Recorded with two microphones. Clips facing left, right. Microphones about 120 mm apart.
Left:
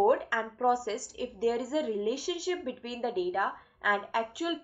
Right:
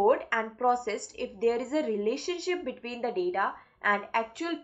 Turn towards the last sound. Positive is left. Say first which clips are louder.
# right 1 dB
turn(degrees=5)  # may be behind; listen again after turning